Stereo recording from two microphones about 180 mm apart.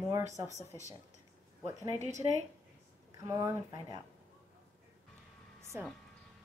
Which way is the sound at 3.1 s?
15° right (ahead or behind).